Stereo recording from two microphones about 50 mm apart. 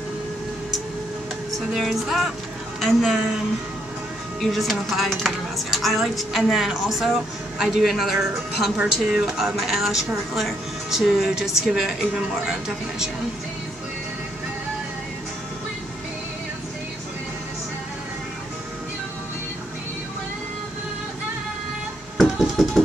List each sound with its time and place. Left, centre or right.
1.7 s a woman's voice: centre
4.4 s a woman's voice: centre
22.1 s music: centre